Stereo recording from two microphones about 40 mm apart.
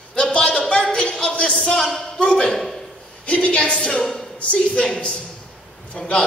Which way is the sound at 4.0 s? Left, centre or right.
Centre.